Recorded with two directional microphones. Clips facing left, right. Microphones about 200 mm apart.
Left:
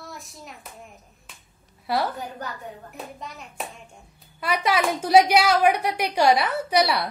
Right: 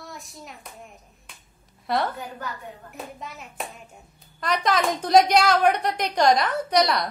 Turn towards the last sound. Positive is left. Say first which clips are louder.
# even
turn(degrees=5)  # may be behind; listen again after turning